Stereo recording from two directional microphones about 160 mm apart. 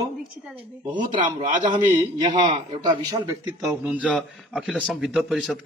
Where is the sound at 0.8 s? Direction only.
55° right (ahead or behind).